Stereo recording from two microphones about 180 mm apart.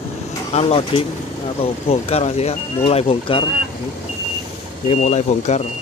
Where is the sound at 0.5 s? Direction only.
30° left (ahead or behind).